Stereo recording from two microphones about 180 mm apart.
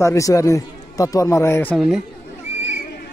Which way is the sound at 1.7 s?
5° right (ahead or behind).